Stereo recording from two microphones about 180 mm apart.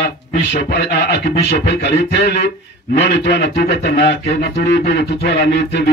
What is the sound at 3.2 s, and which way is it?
A man's voice, 65° left (ahead or behind).